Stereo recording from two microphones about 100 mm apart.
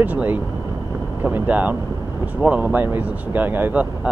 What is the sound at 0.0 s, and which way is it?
Speech, 15° right (ahead or behind).